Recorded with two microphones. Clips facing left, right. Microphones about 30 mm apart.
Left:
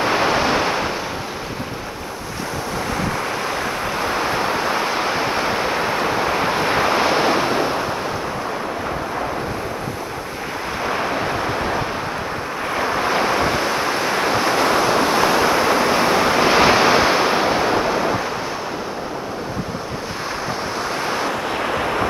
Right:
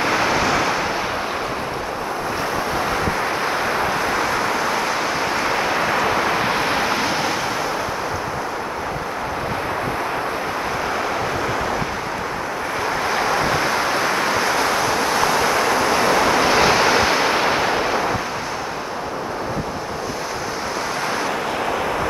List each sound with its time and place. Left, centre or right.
0.1 s waves: left
2.9 s waves: centre
4.2 s vehicle: left
5.5 s waves: centre
6.0 s vehicle: centre
7.0 s waves: centre
7.2 s waves: left
13.6 s vehicle: centre
14.3 s waves: centre